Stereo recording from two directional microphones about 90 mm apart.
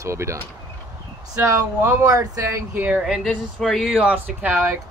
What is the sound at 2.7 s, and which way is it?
Speech, 20° right (ahead or behind).